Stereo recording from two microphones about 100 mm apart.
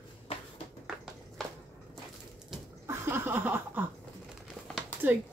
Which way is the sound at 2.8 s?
25° right (ahead or behind).